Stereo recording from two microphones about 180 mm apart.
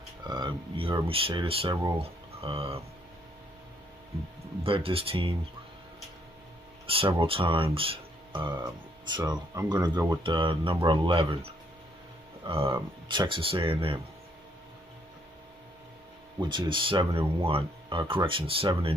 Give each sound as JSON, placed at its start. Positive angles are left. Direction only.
{"t": 0.3, "sound": "speech", "side_deg": -25}
{"t": 4.6, "sound": "speech", "side_deg": -30}
{"t": 6.9, "sound": "speech", "side_deg": -30}
{"t": 16.3, "sound": "speech", "side_deg": -25}